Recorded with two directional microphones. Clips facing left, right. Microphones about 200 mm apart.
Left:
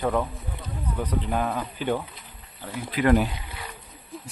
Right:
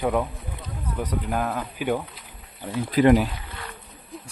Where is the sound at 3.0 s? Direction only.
35° right (ahead or behind).